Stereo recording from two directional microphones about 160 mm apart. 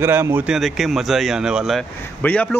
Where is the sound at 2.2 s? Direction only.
10° left (ahead or behind).